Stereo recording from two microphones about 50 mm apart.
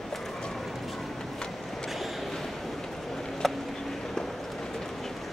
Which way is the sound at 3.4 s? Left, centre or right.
Centre.